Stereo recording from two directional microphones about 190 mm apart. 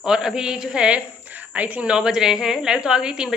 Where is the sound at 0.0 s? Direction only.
5° right (ahead or behind).